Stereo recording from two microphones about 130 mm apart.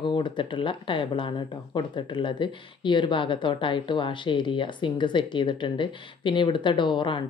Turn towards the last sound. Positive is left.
turn(degrees=35)  # may be behind; listen again after turning